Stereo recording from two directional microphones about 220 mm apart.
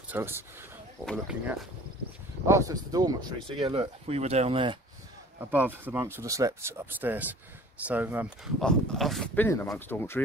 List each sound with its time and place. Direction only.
0.1 s speech: 10° right (ahead or behind)
1.0 s speech: centre (ahead or behind)
2.4 s speech: 15° right (ahead or behind)
5.4 s speech: 10° right (ahead or behind); by 10.2 s 10° left (ahead or behind)